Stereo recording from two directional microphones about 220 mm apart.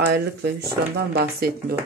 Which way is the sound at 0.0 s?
50° right (ahead or behind).